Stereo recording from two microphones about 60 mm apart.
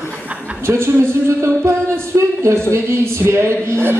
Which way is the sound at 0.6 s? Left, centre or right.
Right.